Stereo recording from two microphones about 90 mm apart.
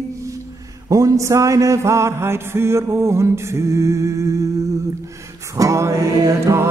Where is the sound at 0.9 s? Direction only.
35° right (ahead or behind).